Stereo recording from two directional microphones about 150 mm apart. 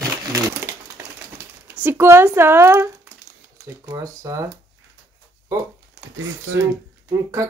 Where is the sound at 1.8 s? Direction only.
15° right (ahead or behind).